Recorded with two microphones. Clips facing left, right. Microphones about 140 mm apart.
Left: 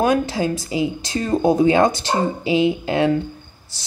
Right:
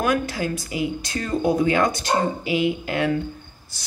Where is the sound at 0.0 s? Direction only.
25° left (ahead or behind).